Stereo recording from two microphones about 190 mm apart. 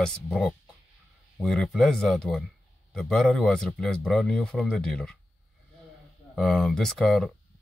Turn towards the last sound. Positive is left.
turn(degrees=0)  # may be behind; listen again after turning